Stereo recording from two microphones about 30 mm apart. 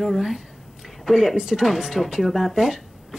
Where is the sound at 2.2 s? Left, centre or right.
Centre.